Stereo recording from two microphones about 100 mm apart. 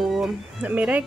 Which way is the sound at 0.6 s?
15° right (ahead or behind).